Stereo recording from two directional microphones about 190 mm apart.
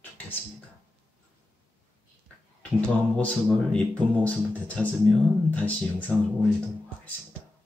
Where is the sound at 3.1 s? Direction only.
5° left (ahead or behind).